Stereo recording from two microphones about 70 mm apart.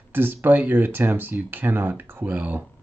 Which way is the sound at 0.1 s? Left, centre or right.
Right.